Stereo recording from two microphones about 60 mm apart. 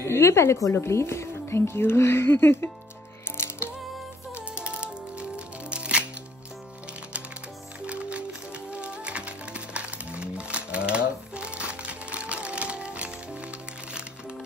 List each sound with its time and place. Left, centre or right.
0.0 s a woman's voice: left
3.3 s music: left
4.6 s music: centre
7.8 s music: centre